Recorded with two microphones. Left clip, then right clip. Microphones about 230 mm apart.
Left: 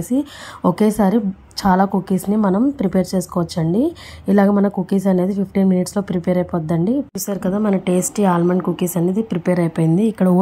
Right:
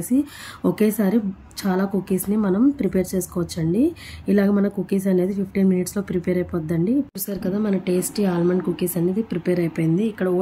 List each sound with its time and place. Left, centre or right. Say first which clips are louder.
0.1 s a woman's voice: left 1 dB; centre